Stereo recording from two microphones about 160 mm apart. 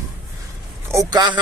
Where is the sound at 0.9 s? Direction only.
25° right (ahead or behind).